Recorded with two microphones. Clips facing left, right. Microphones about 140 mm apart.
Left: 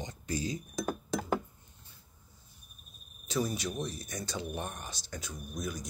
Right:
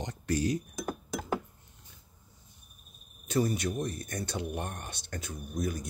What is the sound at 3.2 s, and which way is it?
Speech, 55° right (ahead or behind).